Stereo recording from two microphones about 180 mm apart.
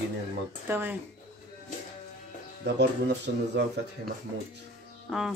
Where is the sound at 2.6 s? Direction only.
70° right (ahead or behind).